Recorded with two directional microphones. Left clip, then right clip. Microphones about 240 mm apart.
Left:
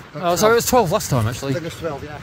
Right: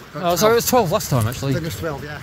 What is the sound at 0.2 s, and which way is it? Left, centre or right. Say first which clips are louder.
Speech: even; centre.